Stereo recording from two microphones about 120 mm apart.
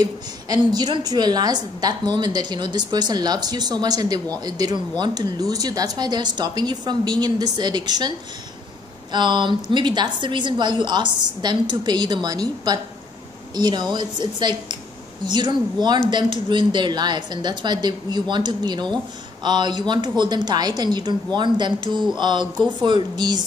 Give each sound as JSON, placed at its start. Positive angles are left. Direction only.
{"t": 0.0, "sound": "a woman's voice", "side_deg": -35}
{"t": 9.1, "sound": "a woman's voice", "side_deg": -40}